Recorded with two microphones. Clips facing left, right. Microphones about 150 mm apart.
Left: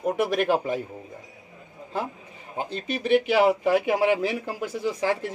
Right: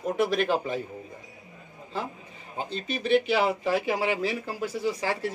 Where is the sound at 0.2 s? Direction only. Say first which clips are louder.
Even; 15° left (ahead or behind).